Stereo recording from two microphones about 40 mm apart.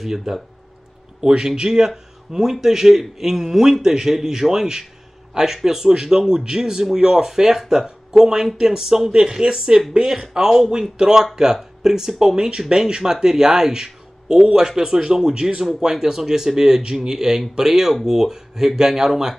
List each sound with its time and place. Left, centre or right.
0.0 s speech: centre